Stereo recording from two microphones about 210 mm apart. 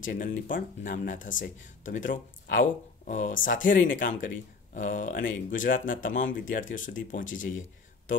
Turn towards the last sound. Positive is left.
turn(degrees=65)  # may be behind; listen again after turning